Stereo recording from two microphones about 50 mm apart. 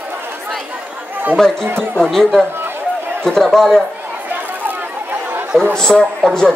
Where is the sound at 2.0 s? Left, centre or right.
Centre.